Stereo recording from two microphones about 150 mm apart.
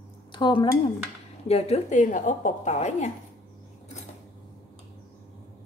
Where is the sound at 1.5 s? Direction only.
50° left (ahead or behind).